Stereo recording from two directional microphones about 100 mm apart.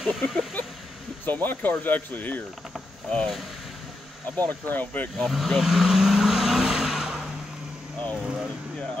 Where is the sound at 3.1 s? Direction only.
5° left (ahead or behind).